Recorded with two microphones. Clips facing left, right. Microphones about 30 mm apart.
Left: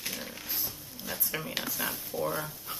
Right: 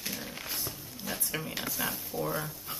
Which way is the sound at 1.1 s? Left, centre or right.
Centre.